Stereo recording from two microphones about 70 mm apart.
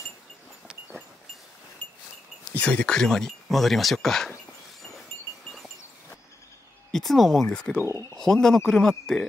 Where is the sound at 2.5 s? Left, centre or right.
Centre.